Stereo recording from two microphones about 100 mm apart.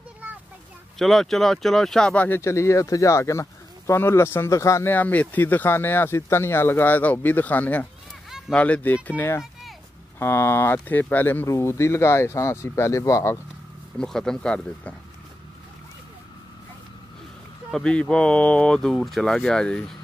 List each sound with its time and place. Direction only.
0.9 s speech: 5° left (ahead or behind)
2.2 s speech: 25° left (ahead or behind)
4.9 s speech: 15° left (ahead or behind)
8.3 s a sound: 5° right (ahead or behind)
8.5 s speech: 15° left (ahead or behind)
9.4 s a sound: centre (ahead or behind)
10.1 s speech: 25° left (ahead or behind)
11.4 s speech: 30° left (ahead or behind)
13.9 s speech: 5° left (ahead or behind)
17.6 s speech: 5° left (ahead or behind)